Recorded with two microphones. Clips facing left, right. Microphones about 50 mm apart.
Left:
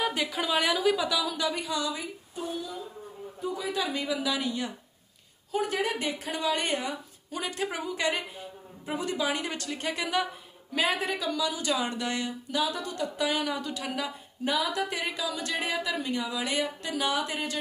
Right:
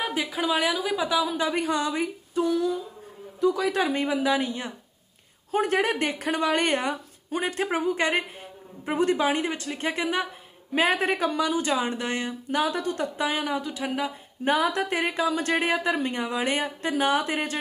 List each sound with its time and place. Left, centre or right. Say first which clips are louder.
0.0 s a woman's voice: right 2 dB; centre
0.9 s speech: right 4 dB; right
2.3 s a woman's voice: right 11 dB; right
3.3 s a woman's voice: right 8 dB; right
3.8 s speech: right 4 dB; right
9.6 s speech: right 2 dB; right
9.8 s speech: right 3 dB; right; by 13.9 s centre
13.9 s speech: right 4 dB; right